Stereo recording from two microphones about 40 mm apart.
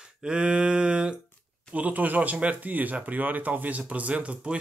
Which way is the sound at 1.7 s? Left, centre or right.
Right.